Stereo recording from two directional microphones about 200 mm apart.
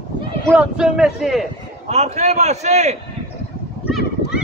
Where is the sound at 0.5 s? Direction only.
5° right (ahead or behind).